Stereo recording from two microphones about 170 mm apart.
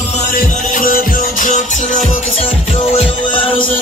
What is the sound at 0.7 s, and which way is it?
Music, 55° left (ahead or behind).